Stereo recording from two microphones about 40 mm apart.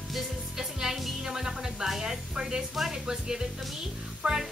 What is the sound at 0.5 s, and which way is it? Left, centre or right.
Music, centre.